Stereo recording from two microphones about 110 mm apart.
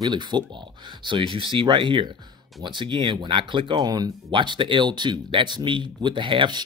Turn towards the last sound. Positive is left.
turn(degrees=-45)  # may be behind; listen again after turning